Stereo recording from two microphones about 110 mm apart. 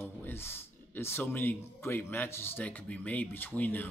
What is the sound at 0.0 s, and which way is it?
Speech, 20° left (ahead or behind).